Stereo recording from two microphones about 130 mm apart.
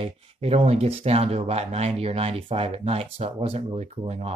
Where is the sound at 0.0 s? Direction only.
50° right (ahead or behind).